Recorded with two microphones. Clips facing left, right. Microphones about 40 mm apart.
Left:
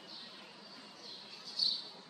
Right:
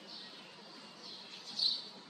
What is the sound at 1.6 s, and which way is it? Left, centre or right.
Squawk, right.